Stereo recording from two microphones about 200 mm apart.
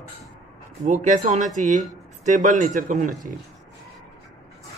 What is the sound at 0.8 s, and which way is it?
A man's voice, 35° right (ahead or behind).